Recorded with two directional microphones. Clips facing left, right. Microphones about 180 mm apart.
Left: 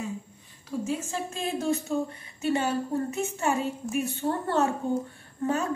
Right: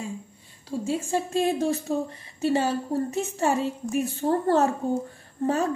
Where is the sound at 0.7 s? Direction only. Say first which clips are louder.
Right 3 dB; 30° right (ahead or behind).